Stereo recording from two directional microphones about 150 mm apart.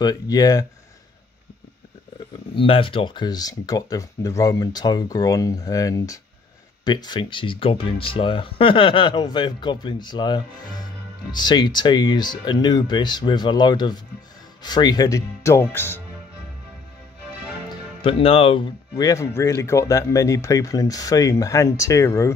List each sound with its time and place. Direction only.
0.0 s speech: 25° left (ahead or behind)
2.5 s speech: 35° left (ahead or behind); by 16.0 s 15° left (ahead or behind)
18.0 s speech: 40° left (ahead or behind)
18.9 s speech: 20° left (ahead or behind)